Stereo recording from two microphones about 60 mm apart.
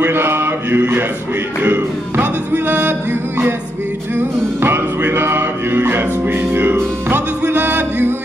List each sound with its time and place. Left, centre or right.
0.0 s mantra: right
1.6 s music: right